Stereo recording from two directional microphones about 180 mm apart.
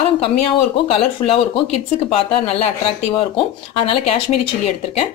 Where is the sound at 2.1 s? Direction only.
35° left (ahead or behind).